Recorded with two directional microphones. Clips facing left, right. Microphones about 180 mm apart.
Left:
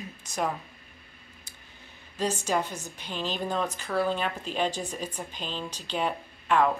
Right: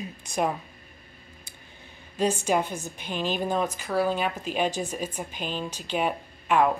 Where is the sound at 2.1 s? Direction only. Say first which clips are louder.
Right 4 dB; 10° right (ahead or behind).